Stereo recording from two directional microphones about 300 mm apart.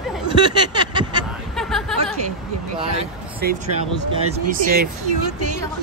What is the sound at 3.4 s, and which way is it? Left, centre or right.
Speech, right.